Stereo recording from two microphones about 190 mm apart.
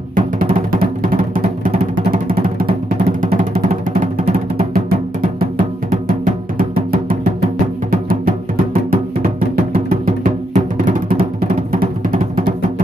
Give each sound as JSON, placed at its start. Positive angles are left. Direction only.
{"t": 0.1, "sound": "music", "side_deg": -45}
{"t": 3.9, "sound": "music", "side_deg": -35}
{"t": 4.8, "sound": "music", "side_deg": -50}
{"t": 6.6, "sound": "music", "side_deg": -50}
{"t": 10.0, "sound": "music", "side_deg": -40}